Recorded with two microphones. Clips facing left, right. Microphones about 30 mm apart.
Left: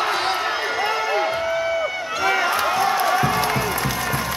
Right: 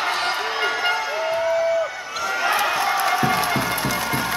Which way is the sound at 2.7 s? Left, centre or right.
Centre.